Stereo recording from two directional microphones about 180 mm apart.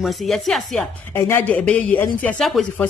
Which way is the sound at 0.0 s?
Centre (ahead or behind).